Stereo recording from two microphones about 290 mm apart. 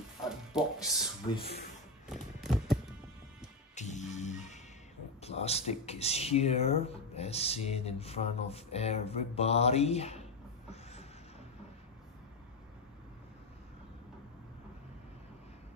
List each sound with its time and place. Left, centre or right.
0.3 s speech: centre
1.3 s speech: centre
2.0 s a sound: centre
3.7 s music: left
5.2 s speech: left
10.7 s train: left